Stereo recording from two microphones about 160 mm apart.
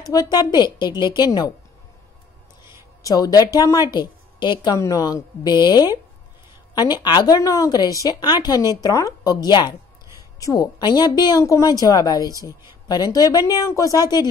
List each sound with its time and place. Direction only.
0.0 s a woman's voice: 25° left (ahead or behind)
3.0 s a woman's voice: 25° left (ahead or behind)